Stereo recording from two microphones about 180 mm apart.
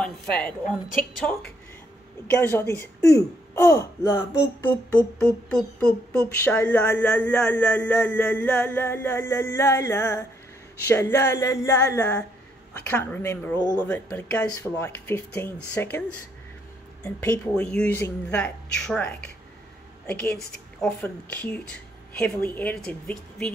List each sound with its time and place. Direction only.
0.0 s speech: 5° left (ahead or behind)
2.3 s speech: 15° left (ahead or behind)
17.6 s speech: 5° left (ahead or behind)